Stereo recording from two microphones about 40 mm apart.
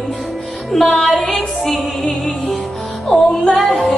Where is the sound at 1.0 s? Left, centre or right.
Centre.